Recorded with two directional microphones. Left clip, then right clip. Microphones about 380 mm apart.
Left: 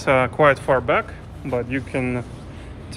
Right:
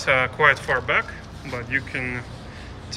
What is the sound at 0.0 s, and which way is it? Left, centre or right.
Speech, centre.